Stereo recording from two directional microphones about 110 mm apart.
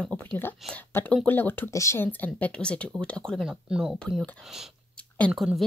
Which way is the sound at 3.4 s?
10° right (ahead or behind).